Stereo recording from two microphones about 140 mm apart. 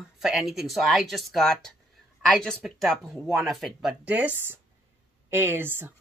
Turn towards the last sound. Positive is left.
turn(degrees=-15)  # may be behind; listen again after turning